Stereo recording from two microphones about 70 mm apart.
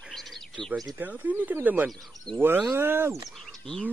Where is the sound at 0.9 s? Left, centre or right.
Right.